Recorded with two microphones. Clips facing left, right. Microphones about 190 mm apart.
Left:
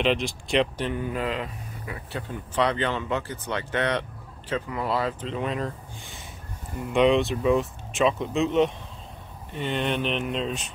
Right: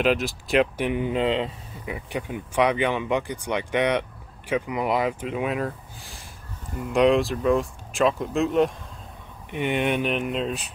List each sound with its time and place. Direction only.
0.0 s speech: 5° right (ahead or behind)
0.8 s speech: 20° right (ahead or behind)
2.0 s speech: 15° right (ahead or behind)
9.5 s speech: 15° right (ahead or behind)